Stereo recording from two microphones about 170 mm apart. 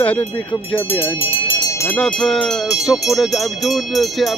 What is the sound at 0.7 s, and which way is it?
Speech, 30° left (ahead or behind).